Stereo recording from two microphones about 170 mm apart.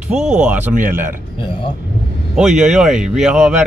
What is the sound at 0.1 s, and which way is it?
Speech, 5° right (ahead or behind).